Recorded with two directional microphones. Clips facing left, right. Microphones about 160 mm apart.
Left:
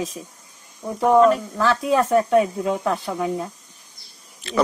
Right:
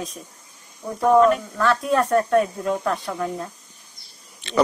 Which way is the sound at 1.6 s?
Centre (ahead or behind).